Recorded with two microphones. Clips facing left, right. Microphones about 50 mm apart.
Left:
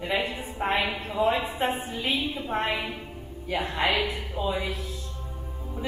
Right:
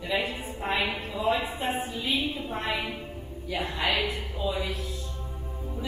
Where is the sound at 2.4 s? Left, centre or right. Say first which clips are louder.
Left 3 dB; left.